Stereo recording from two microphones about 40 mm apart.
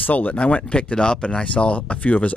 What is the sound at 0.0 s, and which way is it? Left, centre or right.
Speech, left.